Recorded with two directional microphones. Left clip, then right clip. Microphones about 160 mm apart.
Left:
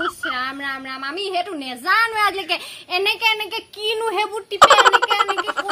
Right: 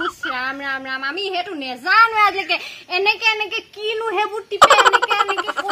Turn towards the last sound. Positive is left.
turn(degrees=0)  # may be behind; listen again after turning